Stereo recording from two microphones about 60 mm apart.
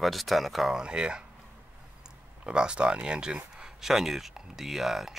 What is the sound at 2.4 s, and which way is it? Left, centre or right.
Speech, centre.